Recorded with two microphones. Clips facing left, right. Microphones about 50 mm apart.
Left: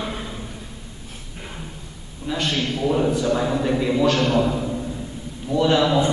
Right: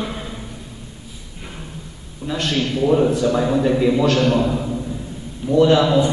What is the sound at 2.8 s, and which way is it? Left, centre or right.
A man's voice, centre.